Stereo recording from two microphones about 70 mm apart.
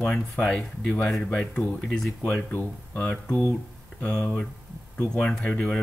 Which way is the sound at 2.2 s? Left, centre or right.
Left.